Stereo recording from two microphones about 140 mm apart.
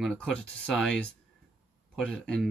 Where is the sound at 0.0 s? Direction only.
5° left (ahead or behind).